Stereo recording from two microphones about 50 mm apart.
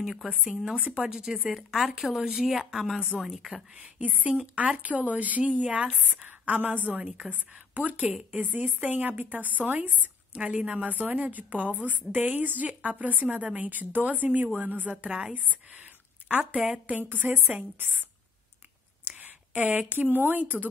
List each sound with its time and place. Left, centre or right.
0.2 s speech: right
1.0 s a woman's voice: centre
3.7 s speech: right
6.0 s a woman's voice: right
17.0 s a woman's voice: right
19.0 s speech: right